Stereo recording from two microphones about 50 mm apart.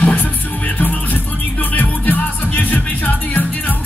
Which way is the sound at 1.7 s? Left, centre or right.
Left.